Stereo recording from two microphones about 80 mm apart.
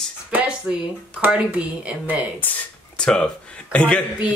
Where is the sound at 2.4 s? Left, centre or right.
Left.